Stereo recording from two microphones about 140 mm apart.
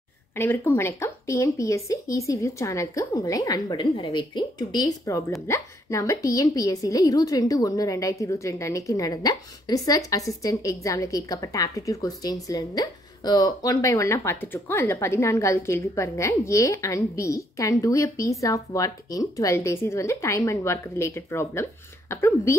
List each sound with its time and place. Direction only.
0.4 s speech: 15° left (ahead or behind)